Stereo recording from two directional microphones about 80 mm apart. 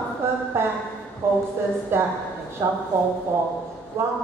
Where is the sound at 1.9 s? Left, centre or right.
Right.